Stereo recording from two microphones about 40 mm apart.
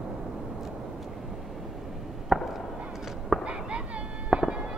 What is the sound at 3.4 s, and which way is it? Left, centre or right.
Chop, right.